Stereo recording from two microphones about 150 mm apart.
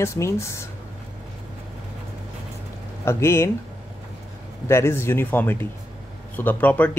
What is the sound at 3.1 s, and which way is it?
Speech, 15° left (ahead or behind).